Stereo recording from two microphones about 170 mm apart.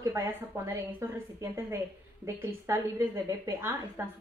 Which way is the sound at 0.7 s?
15° right (ahead or behind).